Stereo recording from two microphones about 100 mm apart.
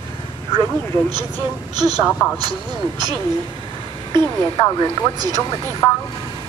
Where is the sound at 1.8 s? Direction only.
45° right (ahead or behind).